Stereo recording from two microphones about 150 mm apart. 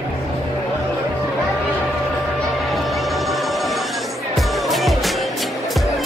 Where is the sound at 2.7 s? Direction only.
Centre (ahead or behind).